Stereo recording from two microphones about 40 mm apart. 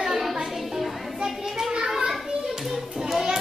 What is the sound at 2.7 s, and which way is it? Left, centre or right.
Music, centre.